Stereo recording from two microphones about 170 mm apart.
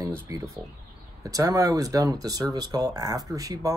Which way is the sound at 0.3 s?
20° right (ahead or behind).